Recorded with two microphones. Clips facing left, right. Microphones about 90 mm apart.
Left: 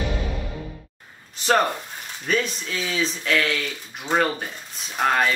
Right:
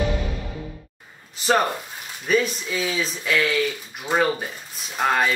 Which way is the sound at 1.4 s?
Centre (ahead or behind).